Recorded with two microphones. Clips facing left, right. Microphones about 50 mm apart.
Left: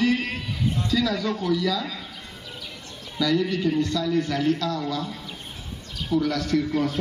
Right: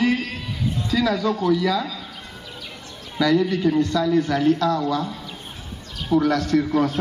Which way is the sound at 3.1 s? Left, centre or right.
Right.